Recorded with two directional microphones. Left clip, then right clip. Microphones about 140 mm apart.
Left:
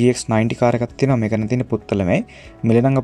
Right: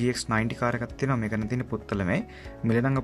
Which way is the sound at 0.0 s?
25° left (ahead or behind).